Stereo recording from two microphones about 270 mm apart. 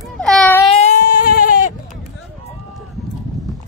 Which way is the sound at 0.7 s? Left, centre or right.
Left.